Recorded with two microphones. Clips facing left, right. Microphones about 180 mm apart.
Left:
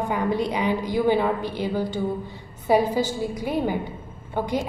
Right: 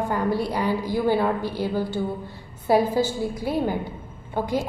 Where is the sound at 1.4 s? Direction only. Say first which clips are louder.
Even; 15° left (ahead or behind).